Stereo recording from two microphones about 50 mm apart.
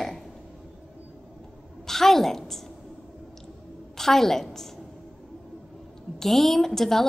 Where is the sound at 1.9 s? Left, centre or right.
Centre.